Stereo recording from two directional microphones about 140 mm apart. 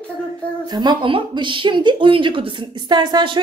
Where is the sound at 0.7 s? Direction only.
35° right (ahead or behind).